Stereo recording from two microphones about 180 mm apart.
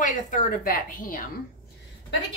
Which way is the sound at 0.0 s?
45° left (ahead or behind).